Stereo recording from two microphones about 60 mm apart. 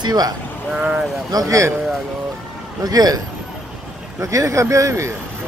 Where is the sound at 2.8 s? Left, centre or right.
Right.